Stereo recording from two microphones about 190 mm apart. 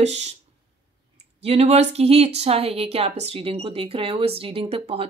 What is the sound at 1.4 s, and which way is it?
A woman's voice, 35° right (ahead or behind).